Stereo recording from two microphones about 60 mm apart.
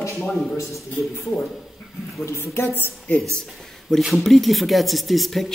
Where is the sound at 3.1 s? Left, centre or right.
Left.